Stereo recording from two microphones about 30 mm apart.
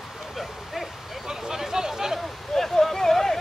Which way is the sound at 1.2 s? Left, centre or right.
Centre.